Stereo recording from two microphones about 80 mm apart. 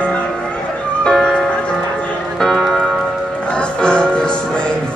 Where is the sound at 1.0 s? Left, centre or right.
Centre.